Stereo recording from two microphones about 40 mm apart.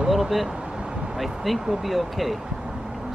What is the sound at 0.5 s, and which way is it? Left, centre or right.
Vehicle, right.